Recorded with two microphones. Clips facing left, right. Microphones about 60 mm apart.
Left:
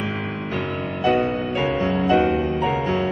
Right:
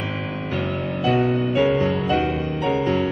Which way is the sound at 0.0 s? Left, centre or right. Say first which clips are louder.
Left 1 dB; centre.